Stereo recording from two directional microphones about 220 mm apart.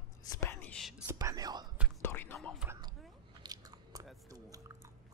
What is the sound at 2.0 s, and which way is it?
Whispering, 10° left (ahead or behind).